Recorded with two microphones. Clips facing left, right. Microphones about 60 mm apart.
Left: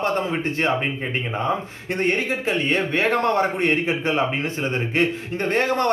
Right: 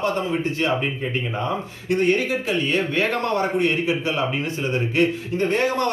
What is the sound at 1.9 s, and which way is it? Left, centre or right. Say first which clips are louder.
Speech: right 3 dB; left.